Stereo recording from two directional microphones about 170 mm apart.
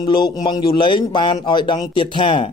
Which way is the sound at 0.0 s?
25° left (ahead or behind).